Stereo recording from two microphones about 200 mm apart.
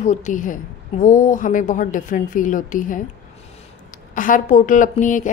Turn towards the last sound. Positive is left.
turn(degrees=40)  # may be behind; listen again after turning